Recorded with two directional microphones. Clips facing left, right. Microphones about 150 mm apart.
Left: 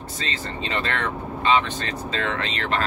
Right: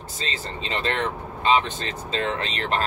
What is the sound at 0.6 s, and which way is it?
Speech, 30° right (ahead or behind).